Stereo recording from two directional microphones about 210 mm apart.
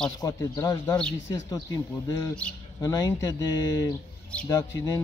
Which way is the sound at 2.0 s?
20° left (ahead or behind).